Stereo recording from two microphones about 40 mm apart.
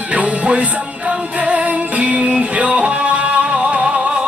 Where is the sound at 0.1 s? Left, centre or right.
Right.